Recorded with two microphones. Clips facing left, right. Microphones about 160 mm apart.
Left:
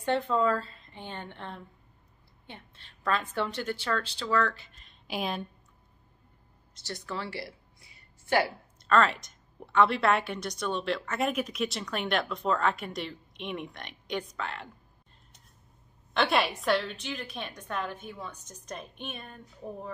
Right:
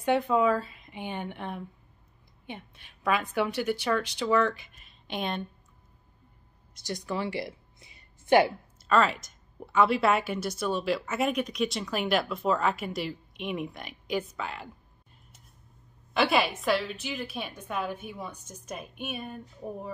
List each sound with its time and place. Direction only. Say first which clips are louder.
0.0 s a woman's voice: right 3 dB; 10° right (ahead or behind)
5.0 s a woman's voice: even; 5° left (ahead or behind)
6.7 s a sound: right 4 dB; 15° right (ahead or behind)
8.8 s a woman's voice: even; centre (ahead or behind)
16.1 s a woman's voice: right 2 dB; 5° right (ahead or behind)